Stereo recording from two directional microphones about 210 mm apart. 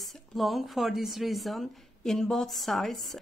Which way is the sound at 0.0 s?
Centre (ahead or behind).